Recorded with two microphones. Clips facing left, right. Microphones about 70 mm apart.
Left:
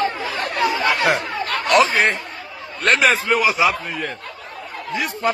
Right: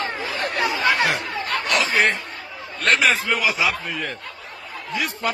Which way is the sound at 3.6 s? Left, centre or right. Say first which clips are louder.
Left 4 dB; left.